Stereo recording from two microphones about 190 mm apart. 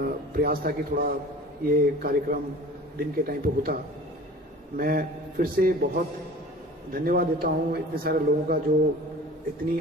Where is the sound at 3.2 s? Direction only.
50° right (ahead or behind).